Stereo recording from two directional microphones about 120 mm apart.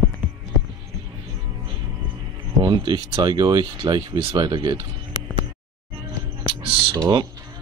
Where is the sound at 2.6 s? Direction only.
40° right (ahead or behind).